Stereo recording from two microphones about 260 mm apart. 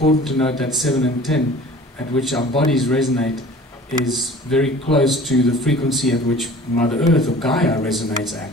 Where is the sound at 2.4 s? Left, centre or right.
Centre.